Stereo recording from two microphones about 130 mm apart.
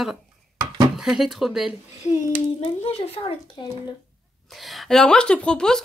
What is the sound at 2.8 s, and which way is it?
Speech, 55° left (ahead or behind).